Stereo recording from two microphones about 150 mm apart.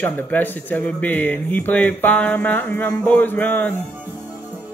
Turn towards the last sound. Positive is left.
turn(degrees=10)  # may be behind; listen again after turning